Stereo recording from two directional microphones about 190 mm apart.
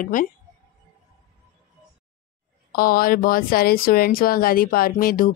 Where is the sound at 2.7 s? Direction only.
50° left (ahead or behind).